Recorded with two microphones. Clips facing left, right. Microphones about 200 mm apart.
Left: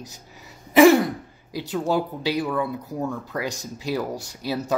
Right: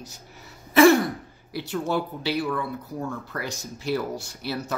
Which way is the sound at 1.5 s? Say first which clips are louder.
Left 3 dB; 15° left (ahead or behind).